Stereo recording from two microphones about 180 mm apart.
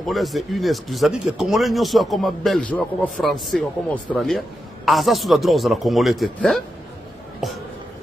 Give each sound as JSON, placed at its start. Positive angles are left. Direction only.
{"t": 0.0, "sound": "speech", "side_deg": 0}